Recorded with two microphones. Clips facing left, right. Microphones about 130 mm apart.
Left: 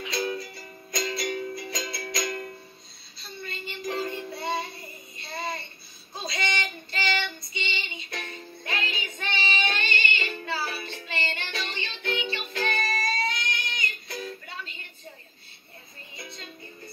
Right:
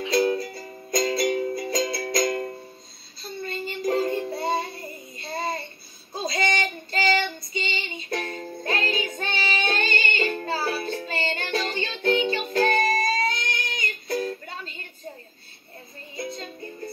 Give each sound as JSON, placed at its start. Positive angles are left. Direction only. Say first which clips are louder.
{"t": 0.0, "sound": "music", "louder": "right 8 dB", "side_deg": -35}
{"t": 5.1, "sound": "child singing", "louder": "right 4 dB", "side_deg": -40}
{"t": 16.2, "sound": "music", "louder": "right 11 dB", "side_deg": -40}